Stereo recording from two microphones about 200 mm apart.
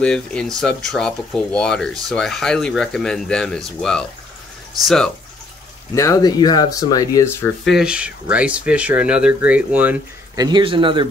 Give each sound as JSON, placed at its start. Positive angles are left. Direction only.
{"t": 0.0, "sound": "speech", "side_deg": 5}
{"t": 5.9, "sound": "speech", "side_deg": 15}
{"t": 7.7, "sound": "speech", "side_deg": -5}